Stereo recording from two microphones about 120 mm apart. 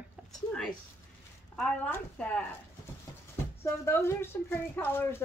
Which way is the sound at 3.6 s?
20° left (ahead or behind).